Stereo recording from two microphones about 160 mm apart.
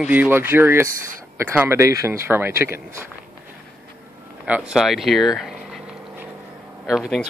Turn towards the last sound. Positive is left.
turn(degrees=0)  # may be behind; listen again after turning